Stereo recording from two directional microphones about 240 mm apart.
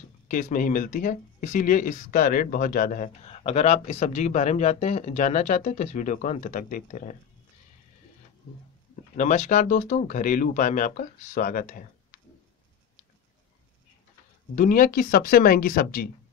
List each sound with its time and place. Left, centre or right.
0.3 s speech: left
9.1 s speech: left
14.5 s speech: left